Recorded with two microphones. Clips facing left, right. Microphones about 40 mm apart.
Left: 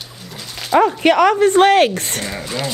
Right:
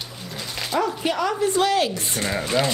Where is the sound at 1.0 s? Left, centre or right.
Left.